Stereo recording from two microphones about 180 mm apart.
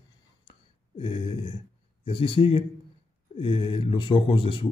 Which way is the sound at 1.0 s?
30° left (ahead or behind).